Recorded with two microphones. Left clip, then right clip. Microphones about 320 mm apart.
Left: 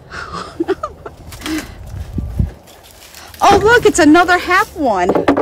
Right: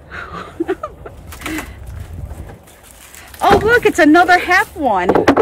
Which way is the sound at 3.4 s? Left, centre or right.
Centre.